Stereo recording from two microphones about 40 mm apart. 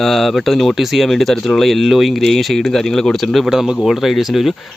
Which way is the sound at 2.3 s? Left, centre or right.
Centre.